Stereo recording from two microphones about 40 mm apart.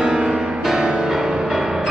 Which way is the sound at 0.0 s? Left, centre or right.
Centre.